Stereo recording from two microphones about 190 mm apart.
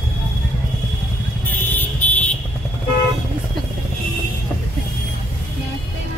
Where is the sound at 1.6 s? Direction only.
10° left (ahead or behind).